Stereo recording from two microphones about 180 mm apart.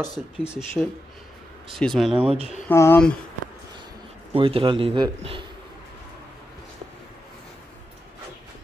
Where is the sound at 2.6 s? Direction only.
10° left (ahead or behind).